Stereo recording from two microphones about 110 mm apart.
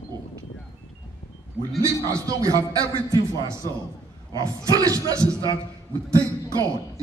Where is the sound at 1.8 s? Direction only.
25° right (ahead or behind).